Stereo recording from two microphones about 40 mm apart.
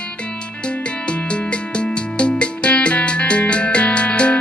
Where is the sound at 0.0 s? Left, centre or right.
Left.